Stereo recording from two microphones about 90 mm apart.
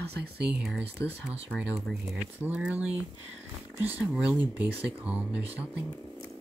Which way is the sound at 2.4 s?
15° right (ahead or behind).